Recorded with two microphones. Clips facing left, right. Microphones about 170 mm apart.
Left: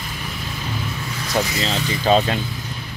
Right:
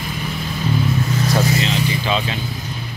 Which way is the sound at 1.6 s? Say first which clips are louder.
Left 1 dB; 40° left (ahead or behind).